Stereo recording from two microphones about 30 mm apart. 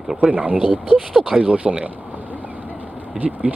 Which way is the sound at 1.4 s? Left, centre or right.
Right.